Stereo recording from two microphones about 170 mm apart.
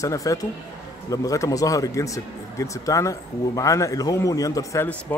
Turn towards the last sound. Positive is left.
turn(degrees=10)  # may be behind; listen again after turning